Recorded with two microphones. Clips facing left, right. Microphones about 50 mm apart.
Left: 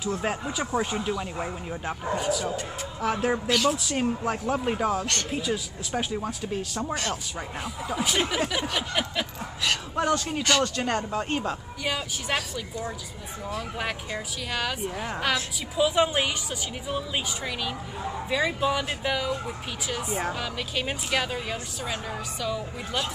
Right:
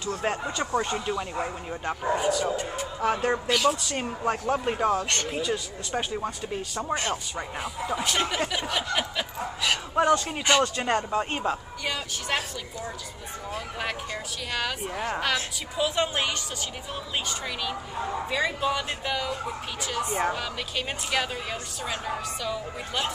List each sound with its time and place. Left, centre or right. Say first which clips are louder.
0.0 s speech: even; centre
6.9 s speech: right 4 dB; right
7.3 s a man's voice: right 1 dB; centre
10.4 s speech: right 1 dB; centre
11.8 s speech: left 1 dB; centre
13.7 s a woman's voice: left 1 dB; centre
18.3 s speech: left 3 dB; centre